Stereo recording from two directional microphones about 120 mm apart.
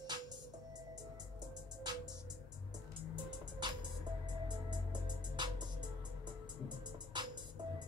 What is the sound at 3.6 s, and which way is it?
Music, 40° right (ahead or behind).